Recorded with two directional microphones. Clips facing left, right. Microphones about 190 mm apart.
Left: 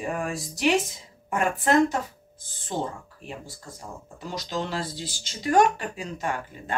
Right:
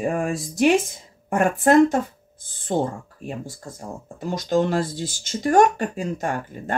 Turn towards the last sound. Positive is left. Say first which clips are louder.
# right 4 dB
turn(degrees=-50)  # may be behind; listen again after turning